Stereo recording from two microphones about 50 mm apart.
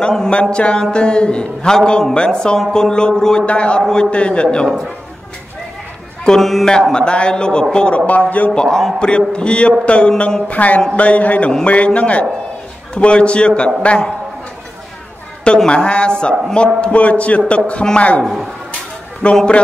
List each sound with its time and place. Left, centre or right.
0.0 s a man's voice: centre
6.2 s a man's voice: centre
8.1 s speech: left
8.5 s a man's voice: centre
15.4 s a man's voice: centre
18.2 s speech: centre
19.2 s a man's voice: left